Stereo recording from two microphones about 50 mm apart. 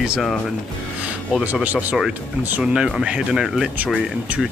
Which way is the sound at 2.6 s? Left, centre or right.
Centre.